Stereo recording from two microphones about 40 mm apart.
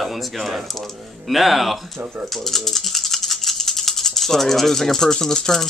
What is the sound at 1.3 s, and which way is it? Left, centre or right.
Speech, centre.